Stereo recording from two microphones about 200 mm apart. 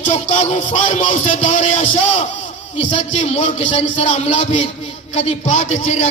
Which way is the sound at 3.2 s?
35° left (ahead or behind).